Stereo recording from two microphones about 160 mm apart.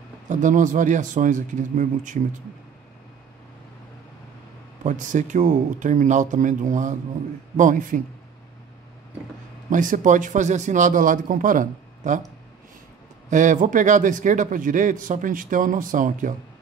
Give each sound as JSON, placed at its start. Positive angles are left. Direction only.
{"t": 0.3, "sound": "a man's voice", "side_deg": -55}
{"t": 4.8, "sound": "a man's voice", "side_deg": -50}
{"t": 9.7, "sound": "a man's voice", "side_deg": -55}
{"t": 13.3, "sound": "a man's voice", "side_deg": -50}